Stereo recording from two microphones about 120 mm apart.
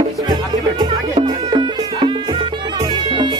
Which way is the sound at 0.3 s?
35° right (ahead or behind).